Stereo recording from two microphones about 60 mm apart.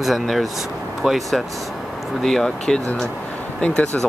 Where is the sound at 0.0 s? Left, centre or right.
Centre.